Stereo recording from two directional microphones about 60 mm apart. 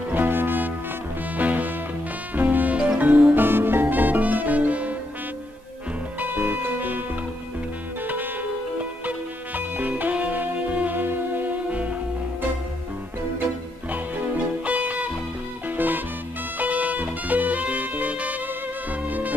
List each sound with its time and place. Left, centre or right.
0.1 s music: right; by 3.3 s centre
3.3 s music: right
6.1 s music: right
11.7 s music: right
14.6 s music: right